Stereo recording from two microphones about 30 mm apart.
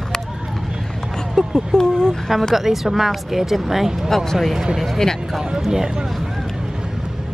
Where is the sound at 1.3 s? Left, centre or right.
Centre.